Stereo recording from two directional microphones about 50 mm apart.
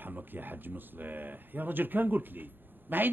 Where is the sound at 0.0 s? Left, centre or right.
Right.